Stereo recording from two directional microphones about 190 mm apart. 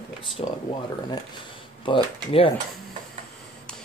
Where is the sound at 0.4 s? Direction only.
35° left (ahead or behind).